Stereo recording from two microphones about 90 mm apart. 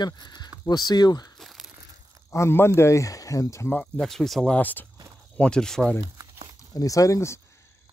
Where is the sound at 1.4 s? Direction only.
Centre (ahead or behind).